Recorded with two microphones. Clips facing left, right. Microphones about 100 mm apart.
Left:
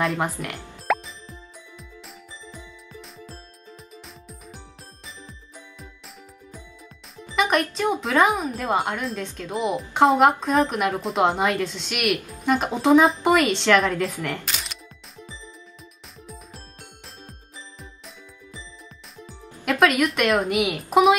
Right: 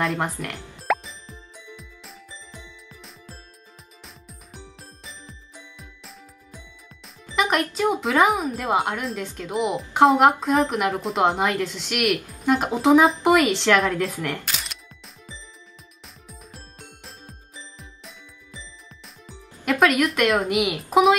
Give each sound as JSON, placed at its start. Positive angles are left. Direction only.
{"t": 0.0, "sound": "music", "side_deg": 0}
{"t": 7.2, "sound": "speech", "side_deg": 0}
{"t": 13.9, "sound": "music", "side_deg": 0}
{"t": 19.8, "sound": "speech", "side_deg": 0}